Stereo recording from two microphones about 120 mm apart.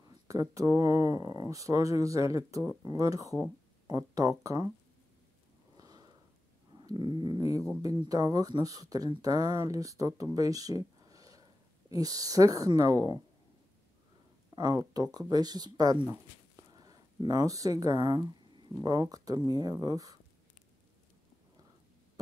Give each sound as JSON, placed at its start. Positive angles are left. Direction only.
{"t": 0.3, "sound": "speech", "side_deg": -30}
{"t": 5.8, "sound": "sniff", "side_deg": -35}
{"t": 6.8, "sound": "a sound", "side_deg": -40}
{"t": 7.8, "sound": "speech", "side_deg": -35}
{"t": 11.1, "sound": "a sound", "side_deg": -30}
{"t": 11.9, "sound": "speech", "side_deg": -30}
{"t": 14.5, "sound": "speech", "side_deg": -30}